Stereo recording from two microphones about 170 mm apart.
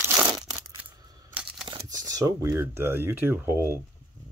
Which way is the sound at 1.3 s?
5° right (ahead or behind).